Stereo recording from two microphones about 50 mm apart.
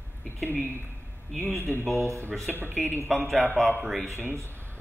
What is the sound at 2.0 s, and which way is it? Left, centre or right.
Speech, right.